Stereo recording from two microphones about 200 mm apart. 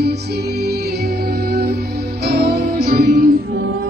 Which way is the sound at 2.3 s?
50° right (ahead or behind).